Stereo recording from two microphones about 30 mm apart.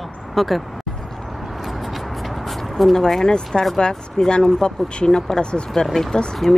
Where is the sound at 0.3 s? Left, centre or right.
Centre.